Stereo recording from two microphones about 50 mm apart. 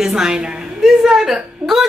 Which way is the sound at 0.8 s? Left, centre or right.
Centre.